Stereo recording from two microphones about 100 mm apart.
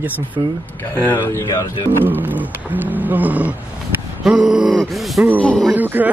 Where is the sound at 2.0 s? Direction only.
20° right (ahead or behind); by 5.7 s 10° left (ahead or behind).